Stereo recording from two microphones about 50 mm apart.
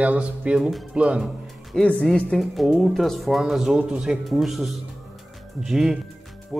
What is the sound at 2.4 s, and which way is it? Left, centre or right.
Speech, centre.